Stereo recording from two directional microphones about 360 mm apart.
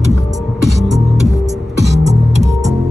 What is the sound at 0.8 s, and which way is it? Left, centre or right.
Music, centre.